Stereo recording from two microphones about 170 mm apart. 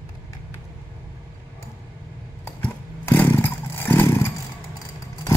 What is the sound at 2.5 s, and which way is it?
Vehicle, 10° left (ahead or behind).